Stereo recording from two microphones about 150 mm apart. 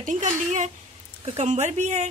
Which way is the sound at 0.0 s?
60° right (ahead or behind).